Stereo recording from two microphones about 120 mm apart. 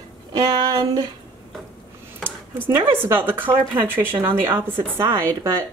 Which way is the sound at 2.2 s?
20° right (ahead or behind).